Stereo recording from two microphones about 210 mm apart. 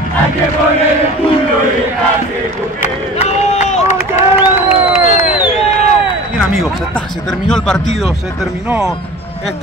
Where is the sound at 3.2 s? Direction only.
30° left (ahead or behind).